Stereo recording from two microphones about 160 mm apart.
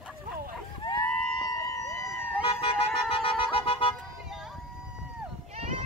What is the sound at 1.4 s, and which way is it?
Emergency vehicle, 20° left (ahead or behind).